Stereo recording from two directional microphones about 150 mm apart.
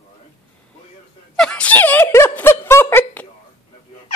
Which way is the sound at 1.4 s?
5° left (ahead or behind).